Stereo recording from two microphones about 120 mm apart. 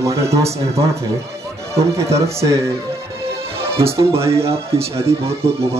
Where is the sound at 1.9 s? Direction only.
25° right (ahead or behind).